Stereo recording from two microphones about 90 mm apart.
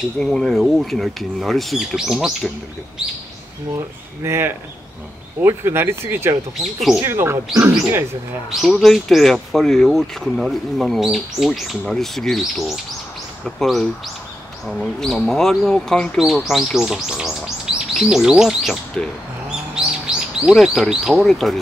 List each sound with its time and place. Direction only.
0.2 s speech: 5° left (ahead or behind)
4.2 s speech: 25° right (ahead or behind)
6.6 s speech: centre (ahead or behind)
7.0 s speech: 25° right (ahead or behind)
8.5 s speech: centre (ahead or behind)
19.7 s bird: 10° right (ahead or behind)
20.5 s speech: centre (ahead or behind)